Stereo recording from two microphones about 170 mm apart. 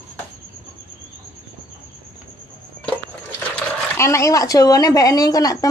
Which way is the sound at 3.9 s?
15° left (ahead or behind).